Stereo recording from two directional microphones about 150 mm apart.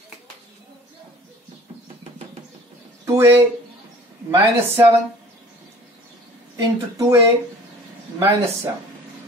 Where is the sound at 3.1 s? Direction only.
15° right (ahead or behind).